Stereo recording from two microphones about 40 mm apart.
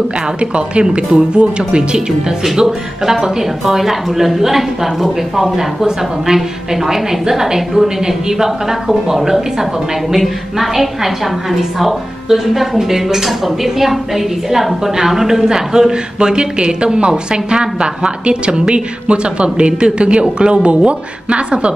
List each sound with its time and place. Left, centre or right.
0.4 s a woman's voice: right